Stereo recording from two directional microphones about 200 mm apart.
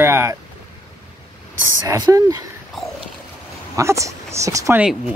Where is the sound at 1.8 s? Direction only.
15° right (ahead or behind).